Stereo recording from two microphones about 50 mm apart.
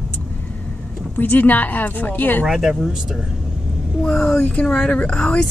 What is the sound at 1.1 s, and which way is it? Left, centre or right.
Speech, left.